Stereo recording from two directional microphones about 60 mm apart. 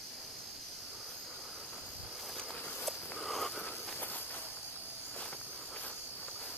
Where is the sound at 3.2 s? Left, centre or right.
Centre.